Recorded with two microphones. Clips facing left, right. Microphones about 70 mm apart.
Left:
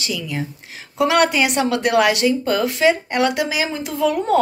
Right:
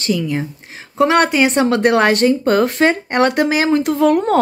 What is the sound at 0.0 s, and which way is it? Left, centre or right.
Speech, right.